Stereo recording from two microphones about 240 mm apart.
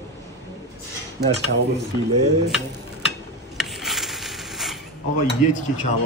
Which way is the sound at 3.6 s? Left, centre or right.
Centre.